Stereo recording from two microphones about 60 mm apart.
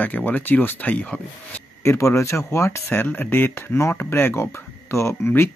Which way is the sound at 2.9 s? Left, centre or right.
Left.